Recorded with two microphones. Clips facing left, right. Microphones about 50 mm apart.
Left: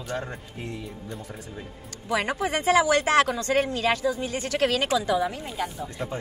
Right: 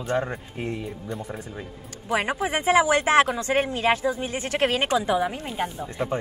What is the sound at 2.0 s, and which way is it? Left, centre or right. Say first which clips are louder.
Speech: right 1 dB; centre.